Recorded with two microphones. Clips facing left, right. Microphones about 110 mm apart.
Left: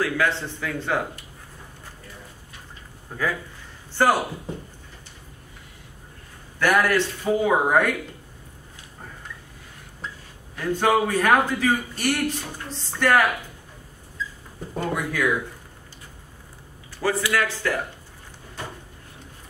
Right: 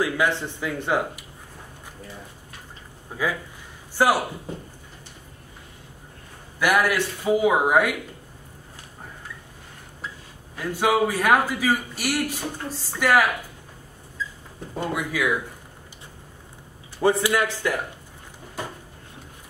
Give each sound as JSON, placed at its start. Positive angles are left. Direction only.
{"t": 0.0, "sound": "a man's voice", "side_deg": -15}
{"t": 3.1, "sound": "a man's voice", "side_deg": -10}
{"t": 6.6, "sound": "a man's voice", "side_deg": -10}
{"t": 10.6, "sound": "a man's voice", "side_deg": -5}
{"t": 14.9, "sound": "speech", "side_deg": -5}
{"t": 17.0, "sound": "a man's voice", "side_deg": -20}